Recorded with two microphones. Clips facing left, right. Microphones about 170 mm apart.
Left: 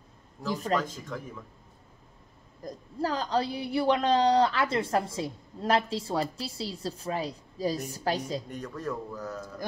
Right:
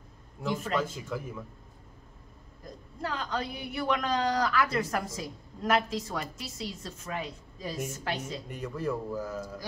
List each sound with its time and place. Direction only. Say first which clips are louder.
0.7 s speech: right 1 dB; 5° right (ahead or behind)
2.6 s a woman's voice: left 6 dB; 35° left (ahead or behind)
8.5 s speech: right 2 dB; 10° right (ahead or behind)